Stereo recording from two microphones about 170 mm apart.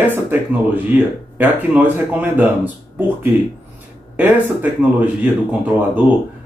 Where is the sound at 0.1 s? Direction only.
10° right (ahead or behind).